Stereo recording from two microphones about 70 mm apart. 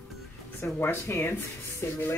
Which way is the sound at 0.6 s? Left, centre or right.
Left.